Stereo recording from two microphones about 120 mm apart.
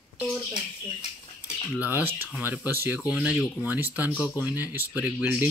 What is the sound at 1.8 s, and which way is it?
Speech, 15° right (ahead or behind).